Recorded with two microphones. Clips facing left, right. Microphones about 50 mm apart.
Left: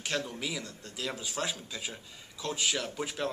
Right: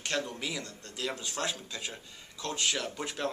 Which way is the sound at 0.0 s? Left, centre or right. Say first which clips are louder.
Even; centre.